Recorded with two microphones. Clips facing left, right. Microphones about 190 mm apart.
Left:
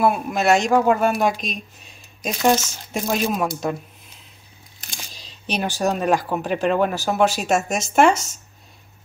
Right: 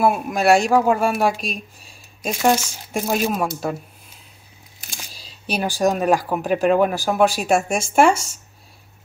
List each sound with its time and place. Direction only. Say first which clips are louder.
0.0 s speech: right 1 dB; 10° right (ahead or behind)
4.7 s camera: even; 10° right (ahead or behind)
6.6 s speech: right 3 dB; 10° right (ahead or behind)